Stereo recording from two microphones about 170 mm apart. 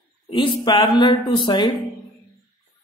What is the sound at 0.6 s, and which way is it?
Speech, 25° left (ahead or behind).